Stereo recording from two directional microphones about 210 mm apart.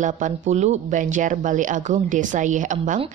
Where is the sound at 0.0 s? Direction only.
35° right (ahead or behind).